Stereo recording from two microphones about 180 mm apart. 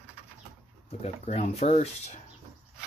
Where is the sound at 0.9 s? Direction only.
35° left (ahead or behind).